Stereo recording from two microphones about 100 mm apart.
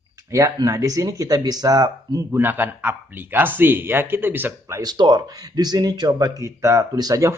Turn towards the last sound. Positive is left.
turn(degrees=-35)  # may be behind; listen again after turning